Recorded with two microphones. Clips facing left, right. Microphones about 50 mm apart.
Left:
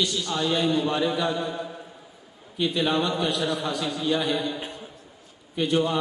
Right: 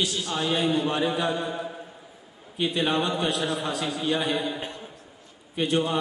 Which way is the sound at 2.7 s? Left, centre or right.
Centre.